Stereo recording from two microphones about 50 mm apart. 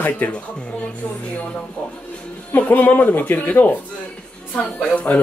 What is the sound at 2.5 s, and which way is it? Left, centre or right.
Speech, left.